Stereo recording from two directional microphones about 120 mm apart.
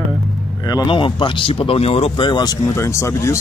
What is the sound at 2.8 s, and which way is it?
Speech, 25° left (ahead or behind).